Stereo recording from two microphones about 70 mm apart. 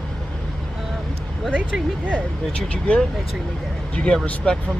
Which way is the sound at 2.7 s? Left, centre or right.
Centre.